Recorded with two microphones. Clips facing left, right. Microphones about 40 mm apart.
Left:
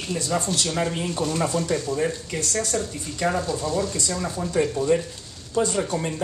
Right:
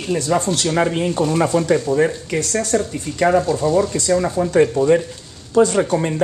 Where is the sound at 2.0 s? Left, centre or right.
Right.